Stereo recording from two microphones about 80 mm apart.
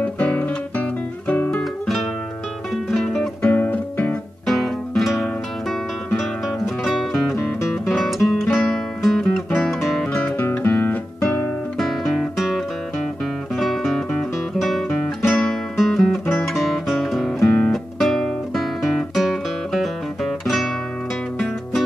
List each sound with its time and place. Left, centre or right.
0.0 s guitar: centre
1.6 s music: centre
3.4 s music: left
4.5 s music: centre
6.8 s music: centre
10.2 s music: left
11.8 s guitar: centre
15.7 s music: centre
17.5 s guitar: centre